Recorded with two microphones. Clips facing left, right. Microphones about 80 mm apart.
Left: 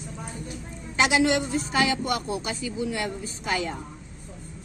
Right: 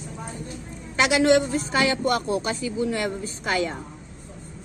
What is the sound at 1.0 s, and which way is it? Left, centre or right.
Speech, right.